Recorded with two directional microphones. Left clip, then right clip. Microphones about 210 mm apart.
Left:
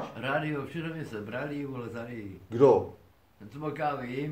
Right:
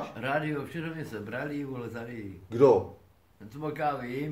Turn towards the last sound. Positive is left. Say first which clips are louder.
# right 1 dB
turn(degrees=-15)  # may be behind; listen again after turning